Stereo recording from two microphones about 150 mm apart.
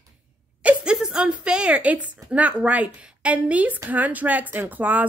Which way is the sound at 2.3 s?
10° right (ahead or behind).